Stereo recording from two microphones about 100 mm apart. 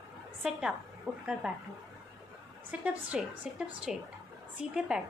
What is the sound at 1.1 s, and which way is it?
Speech, 25° right (ahead or behind).